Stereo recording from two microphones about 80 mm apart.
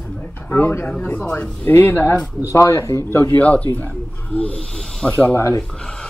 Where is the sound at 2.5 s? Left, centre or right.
Left.